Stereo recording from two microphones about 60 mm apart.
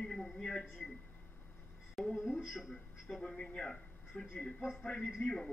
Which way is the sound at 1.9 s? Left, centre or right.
Centre.